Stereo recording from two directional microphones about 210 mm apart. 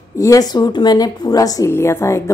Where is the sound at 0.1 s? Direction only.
15° left (ahead or behind).